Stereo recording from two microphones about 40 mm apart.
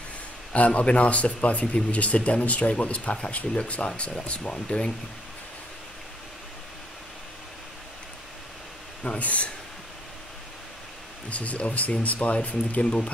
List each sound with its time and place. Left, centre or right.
0.5 s speech: left
4.3 s speech: centre
9.0 s speech: left
11.2 s speech: left